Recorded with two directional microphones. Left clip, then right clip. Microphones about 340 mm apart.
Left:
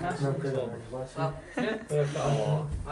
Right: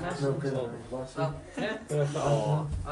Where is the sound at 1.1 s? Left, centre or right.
Centre.